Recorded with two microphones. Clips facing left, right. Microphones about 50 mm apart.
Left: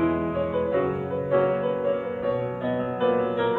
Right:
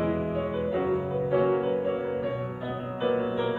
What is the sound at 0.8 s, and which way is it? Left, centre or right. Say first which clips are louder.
Music: left 1 dB; centre.